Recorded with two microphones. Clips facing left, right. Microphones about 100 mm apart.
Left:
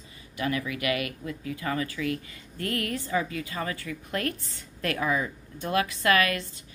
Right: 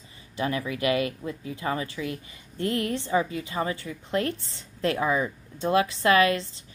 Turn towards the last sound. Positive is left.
turn(degrees=-30)  # may be behind; listen again after turning